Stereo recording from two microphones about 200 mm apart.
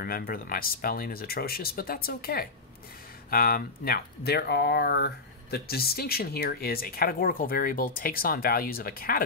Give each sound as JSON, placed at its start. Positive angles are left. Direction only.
{"t": 0.0, "sound": "speech", "side_deg": 50}